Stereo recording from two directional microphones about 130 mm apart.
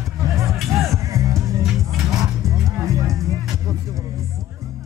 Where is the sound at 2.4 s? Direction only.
25° right (ahead or behind).